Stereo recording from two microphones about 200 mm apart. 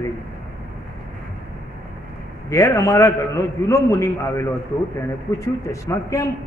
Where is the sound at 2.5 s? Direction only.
15° left (ahead or behind).